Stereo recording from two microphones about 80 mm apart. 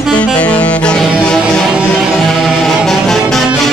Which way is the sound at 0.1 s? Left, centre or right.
Centre.